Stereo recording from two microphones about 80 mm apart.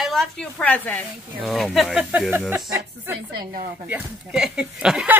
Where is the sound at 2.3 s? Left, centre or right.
Right.